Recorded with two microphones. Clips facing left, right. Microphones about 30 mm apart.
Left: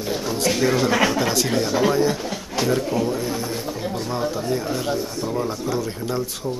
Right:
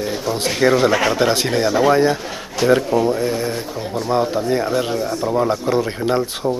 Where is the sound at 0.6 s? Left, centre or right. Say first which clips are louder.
Right 5 dB; right.